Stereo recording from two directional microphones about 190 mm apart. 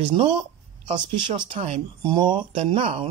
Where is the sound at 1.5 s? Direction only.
25° right (ahead or behind).